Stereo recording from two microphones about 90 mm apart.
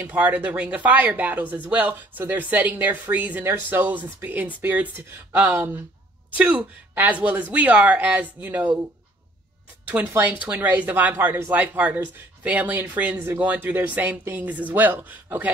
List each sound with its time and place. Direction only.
0.1 s speech: 15° right (ahead or behind)
9.8 s speech: 20° right (ahead or behind)